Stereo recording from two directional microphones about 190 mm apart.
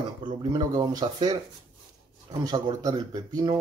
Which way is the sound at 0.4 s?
20° right (ahead or behind).